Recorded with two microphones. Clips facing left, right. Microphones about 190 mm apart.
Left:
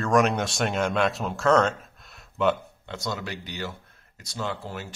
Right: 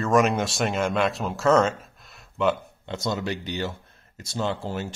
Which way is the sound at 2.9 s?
20° right (ahead or behind).